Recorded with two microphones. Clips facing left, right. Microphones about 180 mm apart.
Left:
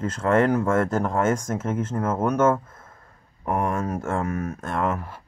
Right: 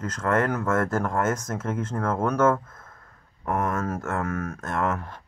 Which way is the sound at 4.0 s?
25° left (ahead or behind).